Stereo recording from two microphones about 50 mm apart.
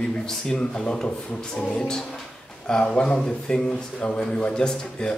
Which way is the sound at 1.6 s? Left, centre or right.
Left.